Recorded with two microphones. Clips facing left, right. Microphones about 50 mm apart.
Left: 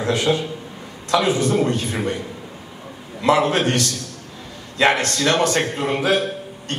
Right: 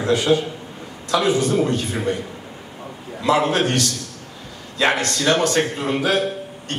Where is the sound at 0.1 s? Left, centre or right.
Left.